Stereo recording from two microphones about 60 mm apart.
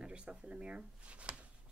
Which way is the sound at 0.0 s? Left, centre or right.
Centre.